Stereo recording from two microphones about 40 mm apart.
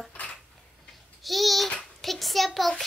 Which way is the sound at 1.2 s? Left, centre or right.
Centre.